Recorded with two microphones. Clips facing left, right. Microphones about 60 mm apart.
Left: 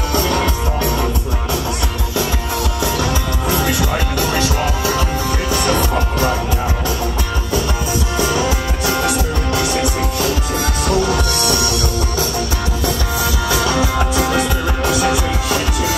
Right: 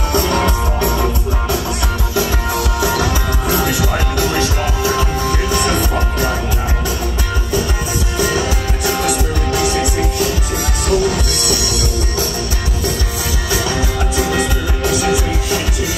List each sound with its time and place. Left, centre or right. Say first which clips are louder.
2.9 s music: right 2 dB; right
9.5 s music: right 2 dB; right
10.9 s music: right 2 dB; left
13.7 s music: left 2 dB; left